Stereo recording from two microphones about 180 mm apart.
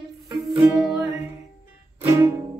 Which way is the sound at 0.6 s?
5° right (ahead or behind).